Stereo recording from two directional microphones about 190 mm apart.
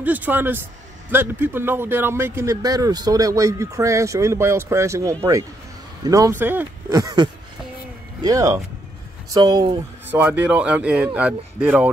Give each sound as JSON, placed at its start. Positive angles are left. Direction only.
{"t": 0.0, "sound": "speech", "side_deg": -10}
{"t": 10.0, "sound": "speech", "side_deg": -10}